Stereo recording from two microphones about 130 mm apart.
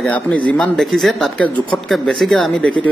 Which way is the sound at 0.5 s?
10° left (ahead or behind).